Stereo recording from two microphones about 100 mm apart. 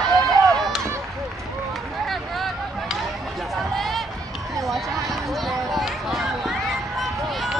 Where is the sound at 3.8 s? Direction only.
Centre (ahead or behind).